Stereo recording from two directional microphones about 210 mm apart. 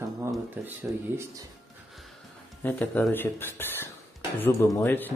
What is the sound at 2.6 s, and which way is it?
Speech, 10° left (ahead or behind).